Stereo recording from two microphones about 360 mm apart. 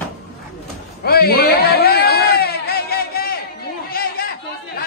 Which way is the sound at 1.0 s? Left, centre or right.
Left.